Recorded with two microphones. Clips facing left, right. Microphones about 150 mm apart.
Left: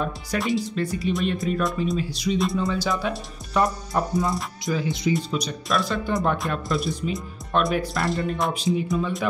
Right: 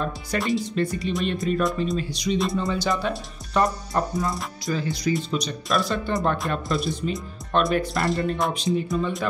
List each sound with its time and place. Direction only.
0.0 s speech: 5° left (ahead or behind)
4.7 s speech: 20° left (ahead or behind)
5.1 s speech: 5° left (ahead or behind)